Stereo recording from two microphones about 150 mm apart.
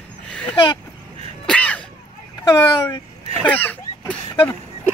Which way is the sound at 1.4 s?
5° left (ahead or behind).